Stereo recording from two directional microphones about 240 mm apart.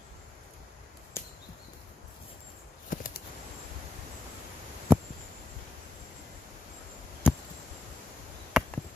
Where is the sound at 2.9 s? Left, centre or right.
Left.